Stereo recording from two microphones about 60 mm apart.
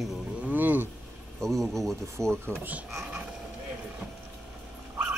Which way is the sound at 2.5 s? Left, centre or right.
Right.